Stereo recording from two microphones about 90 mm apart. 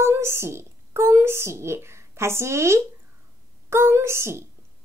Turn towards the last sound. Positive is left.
turn(degrees=-30)  # may be behind; listen again after turning